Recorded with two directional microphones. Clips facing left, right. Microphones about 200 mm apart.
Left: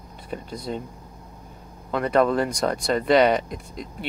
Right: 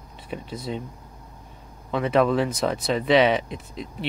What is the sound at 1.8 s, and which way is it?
Speech, centre (ahead or behind).